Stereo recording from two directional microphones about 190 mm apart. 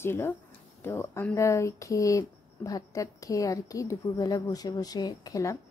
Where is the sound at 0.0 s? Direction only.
10° left (ahead or behind).